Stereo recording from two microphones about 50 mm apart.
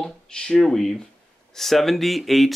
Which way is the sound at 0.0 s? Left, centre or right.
Centre.